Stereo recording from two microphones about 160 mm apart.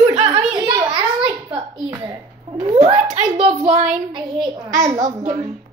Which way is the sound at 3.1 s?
40° right (ahead or behind).